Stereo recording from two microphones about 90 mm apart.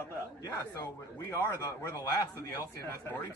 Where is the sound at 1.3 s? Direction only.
25° left (ahead or behind).